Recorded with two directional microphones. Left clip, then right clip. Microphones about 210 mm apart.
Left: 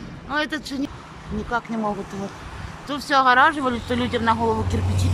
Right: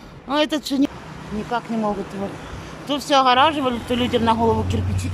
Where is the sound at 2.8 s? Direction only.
10° right (ahead or behind).